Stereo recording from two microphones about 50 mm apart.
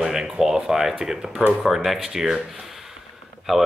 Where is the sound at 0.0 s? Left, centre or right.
Centre.